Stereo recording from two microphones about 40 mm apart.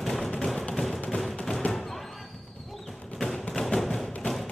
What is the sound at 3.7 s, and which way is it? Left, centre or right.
Music, centre.